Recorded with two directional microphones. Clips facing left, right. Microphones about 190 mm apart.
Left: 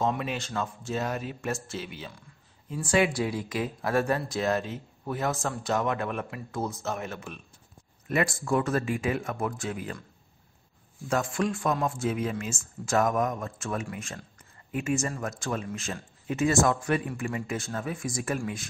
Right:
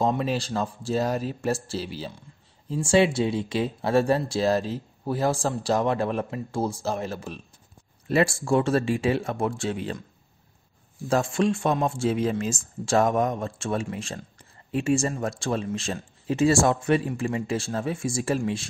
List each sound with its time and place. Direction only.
0.0 s speech: 35° right (ahead or behind)
11.1 s speech: 30° right (ahead or behind)